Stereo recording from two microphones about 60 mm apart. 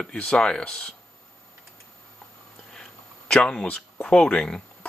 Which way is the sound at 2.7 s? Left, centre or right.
Centre.